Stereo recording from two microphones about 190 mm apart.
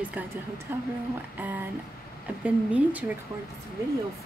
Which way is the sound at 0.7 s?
10° right (ahead or behind).